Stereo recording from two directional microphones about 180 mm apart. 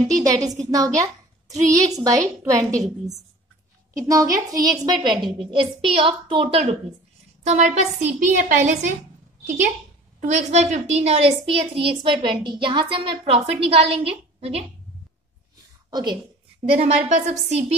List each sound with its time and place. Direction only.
0.1 s a woman's voice: 20° right (ahead or behind); by 8.9 s 45° right (ahead or behind)
10.2 s a woman's voice: 40° right (ahead or behind)
15.9 s a woman's voice: 25° right (ahead or behind)
16.7 s a woman's voice: 40° right (ahead or behind)